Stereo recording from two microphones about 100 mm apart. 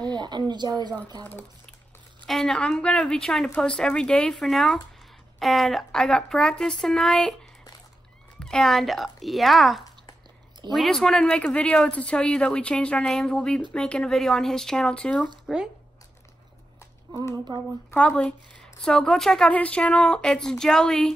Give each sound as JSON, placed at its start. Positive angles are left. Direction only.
{"t": 0.0, "sound": "speech", "side_deg": -45}
{"t": 2.2, "sound": "speech", "side_deg": 5}
{"t": 8.4, "sound": "speech", "side_deg": 5}
{"t": 15.5, "sound": "speech", "side_deg": 0}
{"t": 17.9, "sound": "speech", "side_deg": 10}